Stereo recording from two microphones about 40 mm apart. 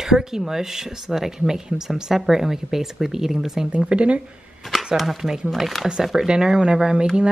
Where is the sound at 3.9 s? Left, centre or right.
Right.